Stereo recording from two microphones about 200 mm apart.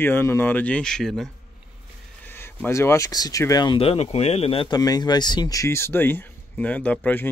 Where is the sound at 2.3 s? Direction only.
10° left (ahead or behind).